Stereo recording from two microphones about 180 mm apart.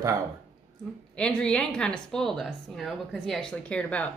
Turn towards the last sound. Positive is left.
turn(degrees=5)  # may be behind; listen again after turning